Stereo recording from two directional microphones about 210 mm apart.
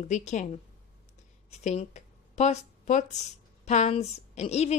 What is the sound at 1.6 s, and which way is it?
A woman's voice, 35° left (ahead or behind).